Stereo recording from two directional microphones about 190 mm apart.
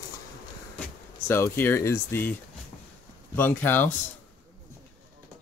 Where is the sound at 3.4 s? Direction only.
10° left (ahead or behind).